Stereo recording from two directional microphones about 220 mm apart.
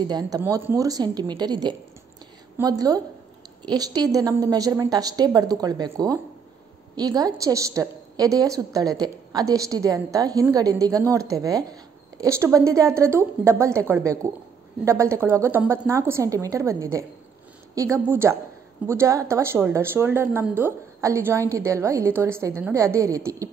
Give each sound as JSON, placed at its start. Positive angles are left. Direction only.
{"t": 0.0, "sound": "a woman's voice", "side_deg": -15}